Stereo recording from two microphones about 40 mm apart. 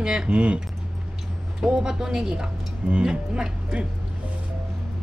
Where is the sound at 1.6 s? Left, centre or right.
Centre.